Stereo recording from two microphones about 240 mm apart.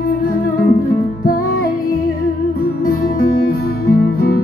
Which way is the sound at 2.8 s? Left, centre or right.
Left.